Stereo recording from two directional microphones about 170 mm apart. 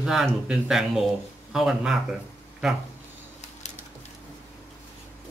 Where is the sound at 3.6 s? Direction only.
45° left (ahead or behind).